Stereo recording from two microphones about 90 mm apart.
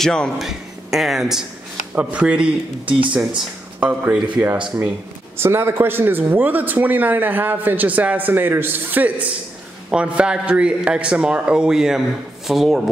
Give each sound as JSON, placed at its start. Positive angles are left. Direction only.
{"t": 0.0, "sound": "a man's voice", "side_deg": 10}
{"t": 0.4, "sound": "speech", "side_deg": -5}
{"t": 2.0, "sound": "a man's voice", "side_deg": -15}
{"t": 2.8, "sound": "speech", "side_deg": -70}
{"t": 3.8, "sound": "a man's voice", "side_deg": -20}